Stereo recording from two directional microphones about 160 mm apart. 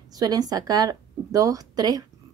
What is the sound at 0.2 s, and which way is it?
Speech, 25° right (ahead or behind).